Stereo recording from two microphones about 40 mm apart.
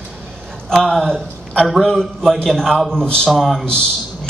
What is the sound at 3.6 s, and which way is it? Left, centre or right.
Speech, left.